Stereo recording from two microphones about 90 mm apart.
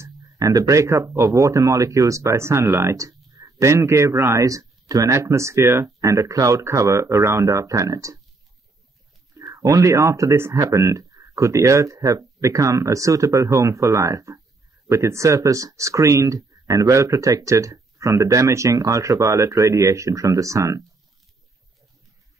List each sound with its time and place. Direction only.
0.0 s speech: 40° right (ahead or behind)
9.3 s speech: 40° right (ahead or behind)